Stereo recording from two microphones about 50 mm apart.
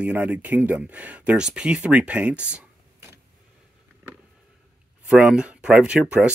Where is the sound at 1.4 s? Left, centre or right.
Centre.